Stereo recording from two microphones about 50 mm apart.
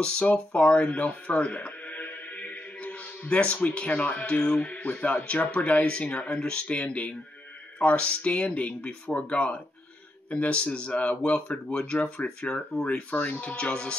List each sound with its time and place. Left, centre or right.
0.0 s music: left
3.6 s speech: left
13.6 s speech: left